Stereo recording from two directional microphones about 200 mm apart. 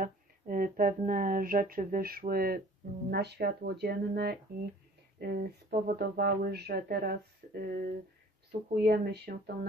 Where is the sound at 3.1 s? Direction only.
55° right (ahead or behind).